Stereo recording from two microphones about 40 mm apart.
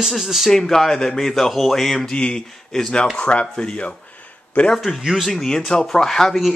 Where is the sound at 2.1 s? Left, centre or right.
Left.